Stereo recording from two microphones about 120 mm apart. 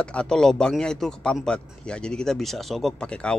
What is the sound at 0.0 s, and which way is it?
A man's voice, 10° left (ahead or behind).